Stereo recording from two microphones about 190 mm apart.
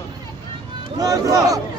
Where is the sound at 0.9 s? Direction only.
20° right (ahead or behind).